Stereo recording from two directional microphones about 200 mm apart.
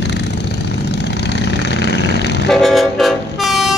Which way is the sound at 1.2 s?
60° left (ahead or behind).